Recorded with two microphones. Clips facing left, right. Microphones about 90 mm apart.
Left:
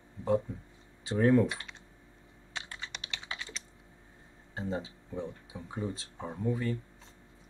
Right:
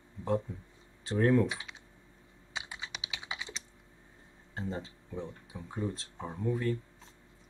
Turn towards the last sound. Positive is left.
turn(degrees=0)  # may be behind; listen again after turning